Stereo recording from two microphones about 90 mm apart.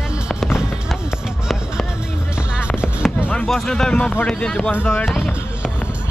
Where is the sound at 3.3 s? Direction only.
5° left (ahead or behind).